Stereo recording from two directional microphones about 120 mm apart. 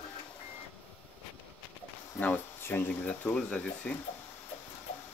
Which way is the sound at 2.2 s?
15° left (ahead or behind).